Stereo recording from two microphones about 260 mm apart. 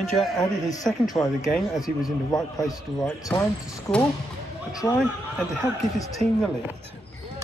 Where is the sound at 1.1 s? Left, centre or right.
Left.